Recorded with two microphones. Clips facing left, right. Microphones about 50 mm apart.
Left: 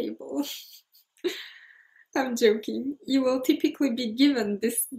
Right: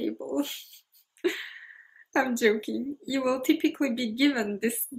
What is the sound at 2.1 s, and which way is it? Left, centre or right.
Speech, right.